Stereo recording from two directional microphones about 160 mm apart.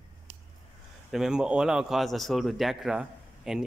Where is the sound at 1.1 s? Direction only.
5° right (ahead or behind).